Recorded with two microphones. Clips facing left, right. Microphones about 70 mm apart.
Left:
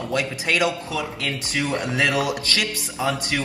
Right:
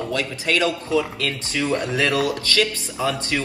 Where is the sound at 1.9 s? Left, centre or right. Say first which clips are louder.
Left 2 dB; left.